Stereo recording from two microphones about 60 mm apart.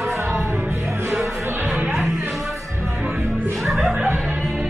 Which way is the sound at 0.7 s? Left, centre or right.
Right.